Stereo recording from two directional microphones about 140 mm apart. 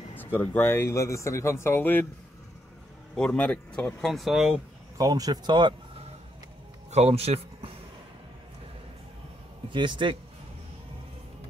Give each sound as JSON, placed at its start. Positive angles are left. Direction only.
{"t": 0.4, "sound": "speech", "side_deg": 15}
{"t": 3.2, "sound": "speech", "side_deg": 5}
{"t": 4.9, "sound": "speech", "side_deg": -25}
{"t": 6.9, "sound": "speech", "side_deg": -50}
{"t": 9.7, "sound": "speech", "side_deg": -35}